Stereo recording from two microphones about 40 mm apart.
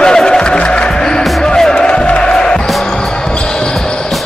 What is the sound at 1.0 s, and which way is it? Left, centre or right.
Music, centre.